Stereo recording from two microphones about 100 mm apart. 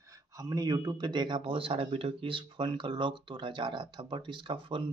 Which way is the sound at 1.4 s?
65° right (ahead or behind).